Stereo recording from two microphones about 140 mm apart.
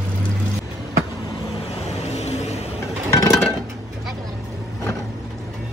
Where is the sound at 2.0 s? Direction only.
50° left (ahead or behind).